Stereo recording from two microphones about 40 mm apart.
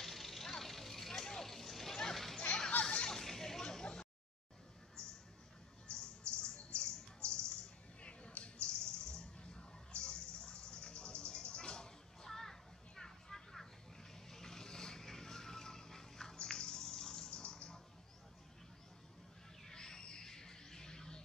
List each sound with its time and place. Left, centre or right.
0.0 s vehicle: centre
2.8 s a sound: left
3.1 s a sound: centre
5.9 s bird: left
7.2 s music: left
8.0 s bird: left; by 13.7 s centre
14.3 s vehicle: centre
16.3 s bathtub: centre
17.4 s a sound: left
19.6 s bird: centre